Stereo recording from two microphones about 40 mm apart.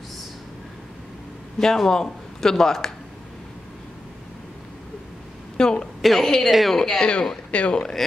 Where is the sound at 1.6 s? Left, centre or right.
Centre.